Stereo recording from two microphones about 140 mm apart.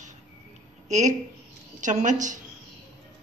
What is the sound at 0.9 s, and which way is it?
A woman's voice, 60° right (ahead or behind).